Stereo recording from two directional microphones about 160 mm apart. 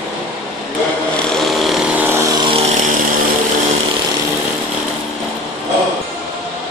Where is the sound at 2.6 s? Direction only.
50° right (ahead or behind).